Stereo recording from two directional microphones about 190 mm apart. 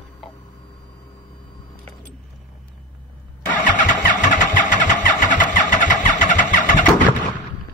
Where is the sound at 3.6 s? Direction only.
40° left (ahead or behind).